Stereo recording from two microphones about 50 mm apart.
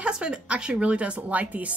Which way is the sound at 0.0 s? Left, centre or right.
Centre.